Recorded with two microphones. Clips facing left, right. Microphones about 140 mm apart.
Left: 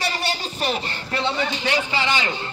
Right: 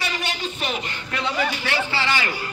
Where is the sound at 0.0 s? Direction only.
35° left (ahead or behind).